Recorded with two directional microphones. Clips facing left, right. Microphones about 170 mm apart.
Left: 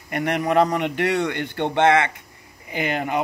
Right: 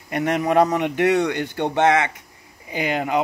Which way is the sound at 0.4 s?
15° right (ahead or behind).